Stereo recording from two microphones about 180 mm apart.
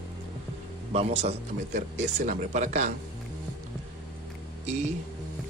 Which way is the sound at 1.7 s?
45° right (ahead or behind).